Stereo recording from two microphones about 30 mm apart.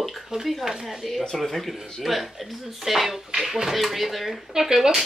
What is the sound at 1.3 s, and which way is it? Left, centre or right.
Speech, centre.